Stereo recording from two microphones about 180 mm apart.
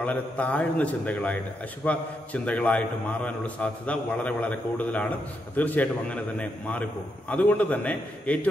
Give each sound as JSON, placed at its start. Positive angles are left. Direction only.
{"t": 0.0, "sound": "a man's voice", "side_deg": 10}